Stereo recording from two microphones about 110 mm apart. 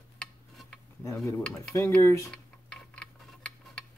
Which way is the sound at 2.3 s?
10° left (ahead or behind).